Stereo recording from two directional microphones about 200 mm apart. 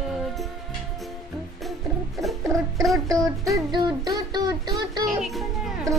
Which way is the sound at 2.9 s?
15° right (ahead or behind).